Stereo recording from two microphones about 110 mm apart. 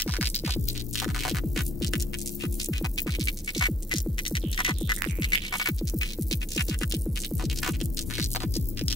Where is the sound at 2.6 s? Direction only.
35° left (ahead or behind).